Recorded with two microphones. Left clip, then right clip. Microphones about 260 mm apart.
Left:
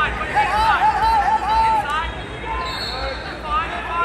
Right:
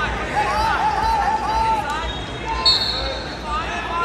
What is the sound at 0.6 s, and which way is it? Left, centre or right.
Music, centre.